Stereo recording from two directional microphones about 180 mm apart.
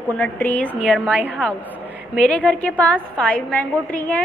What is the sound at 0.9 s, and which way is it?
Speech, 5° right (ahead or behind).